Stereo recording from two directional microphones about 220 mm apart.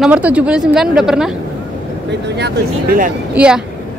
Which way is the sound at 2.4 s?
50° right (ahead or behind).